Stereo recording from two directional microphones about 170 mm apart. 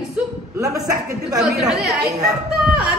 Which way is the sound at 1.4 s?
Centre (ahead or behind).